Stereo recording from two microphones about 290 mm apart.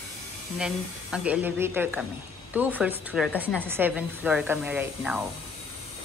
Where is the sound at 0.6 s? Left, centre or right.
Centre.